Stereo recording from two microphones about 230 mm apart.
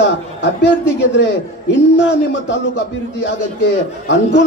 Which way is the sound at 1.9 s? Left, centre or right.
Left.